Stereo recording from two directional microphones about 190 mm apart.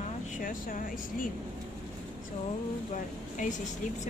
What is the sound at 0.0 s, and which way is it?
Speech, 45° left (ahead or behind).